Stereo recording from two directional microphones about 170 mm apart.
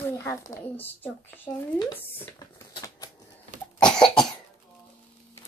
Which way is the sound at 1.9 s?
10° left (ahead or behind).